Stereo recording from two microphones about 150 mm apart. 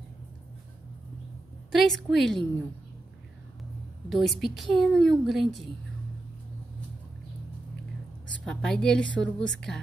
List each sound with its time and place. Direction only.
1.7 s a woman's voice: centre (ahead or behind)
4.1 s a woman's voice: centre (ahead or behind)
8.5 s a woman's voice: 5° left (ahead or behind)